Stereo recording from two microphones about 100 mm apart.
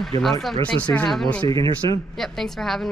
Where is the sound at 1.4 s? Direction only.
70° right (ahead or behind).